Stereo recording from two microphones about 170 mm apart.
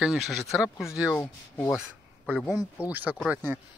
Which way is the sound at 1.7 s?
5° left (ahead or behind).